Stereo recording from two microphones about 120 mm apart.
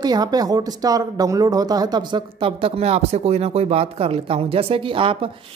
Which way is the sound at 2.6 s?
60° right (ahead or behind).